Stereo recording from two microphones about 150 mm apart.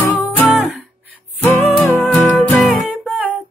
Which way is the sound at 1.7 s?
5° left (ahead or behind).